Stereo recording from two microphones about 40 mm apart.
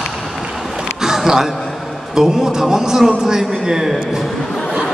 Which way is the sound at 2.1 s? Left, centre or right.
Centre.